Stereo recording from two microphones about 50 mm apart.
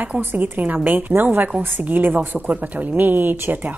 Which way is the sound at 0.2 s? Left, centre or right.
Right.